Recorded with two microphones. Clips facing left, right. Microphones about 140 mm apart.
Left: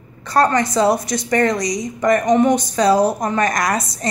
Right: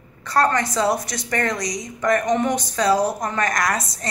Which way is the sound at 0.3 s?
15° left (ahead or behind).